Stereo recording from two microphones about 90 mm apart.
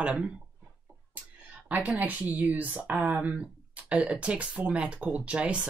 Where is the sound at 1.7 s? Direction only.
15° right (ahead or behind).